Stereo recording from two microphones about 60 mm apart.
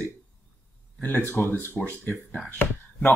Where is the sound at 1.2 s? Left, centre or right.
Left.